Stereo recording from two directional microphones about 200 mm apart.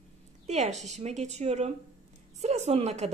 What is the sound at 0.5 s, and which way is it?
A woman's voice, 35° right (ahead or behind).